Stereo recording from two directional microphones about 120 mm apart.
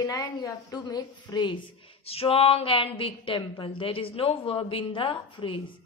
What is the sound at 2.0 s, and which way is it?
A woman's voice, 55° left (ahead or behind).